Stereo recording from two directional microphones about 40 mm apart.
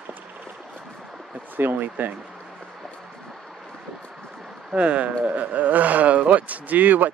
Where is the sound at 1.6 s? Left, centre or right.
Right.